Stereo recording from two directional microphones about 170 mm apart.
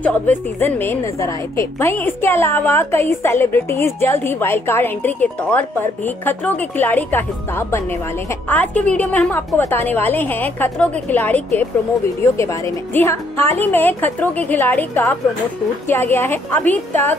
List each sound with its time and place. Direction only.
0.0 s a woman's voice: 10° left (ahead or behind)